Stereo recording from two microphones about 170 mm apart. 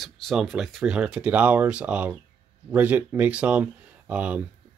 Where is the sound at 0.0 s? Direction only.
Centre (ahead or behind).